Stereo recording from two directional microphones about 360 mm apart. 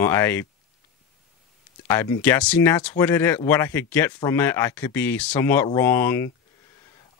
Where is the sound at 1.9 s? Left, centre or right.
Centre.